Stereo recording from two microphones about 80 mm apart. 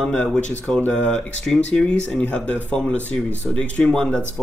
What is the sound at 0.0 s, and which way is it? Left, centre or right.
Speech, centre.